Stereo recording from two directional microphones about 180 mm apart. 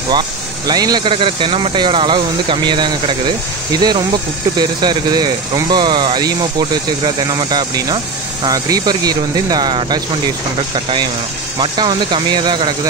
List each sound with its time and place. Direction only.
0.7 s speech: 20° right (ahead or behind)